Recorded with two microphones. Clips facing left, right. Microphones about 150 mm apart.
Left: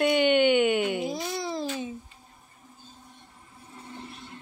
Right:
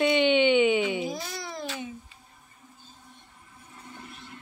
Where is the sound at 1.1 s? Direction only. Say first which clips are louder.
Left 5 dB; 25° left (ahead or behind).